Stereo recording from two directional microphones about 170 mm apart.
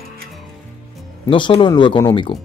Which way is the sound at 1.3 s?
30° left (ahead or behind).